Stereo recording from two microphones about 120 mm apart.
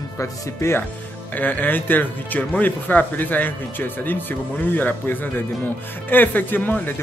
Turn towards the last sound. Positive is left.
turn(degrees=15)  # may be behind; listen again after turning